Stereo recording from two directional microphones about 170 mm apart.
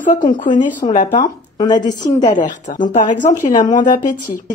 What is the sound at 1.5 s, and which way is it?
Speech, 25° left (ahead or behind).